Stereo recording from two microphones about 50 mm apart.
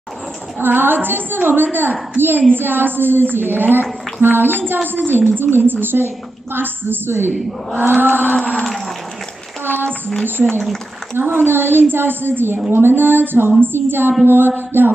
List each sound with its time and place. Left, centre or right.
0.6 s a woman's voice: right
8.4 s moo: left
8.6 s livestock: centre
9.8 s a sound: left
11.2 s a woman's voice: right